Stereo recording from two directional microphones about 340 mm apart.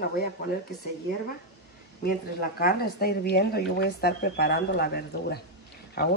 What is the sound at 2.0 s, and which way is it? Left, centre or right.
Speech, left.